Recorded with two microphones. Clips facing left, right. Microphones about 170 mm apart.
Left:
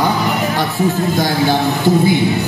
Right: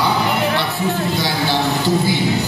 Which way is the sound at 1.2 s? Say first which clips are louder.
Left 4 dB; 50° left (ahead or behind).